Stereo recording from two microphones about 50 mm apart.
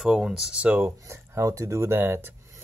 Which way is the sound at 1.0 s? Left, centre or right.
Right.